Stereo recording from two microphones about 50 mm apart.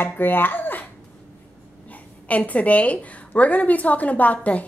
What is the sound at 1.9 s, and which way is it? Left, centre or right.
A woman's voice, left.